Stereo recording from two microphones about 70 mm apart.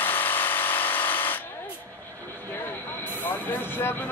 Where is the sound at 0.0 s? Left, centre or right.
Left.